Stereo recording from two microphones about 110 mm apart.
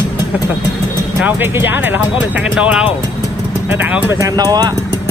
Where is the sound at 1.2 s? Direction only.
20° right (ahead or behind).